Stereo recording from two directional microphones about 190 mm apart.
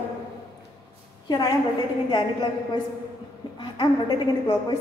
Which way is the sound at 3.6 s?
25° left (ahead or behind).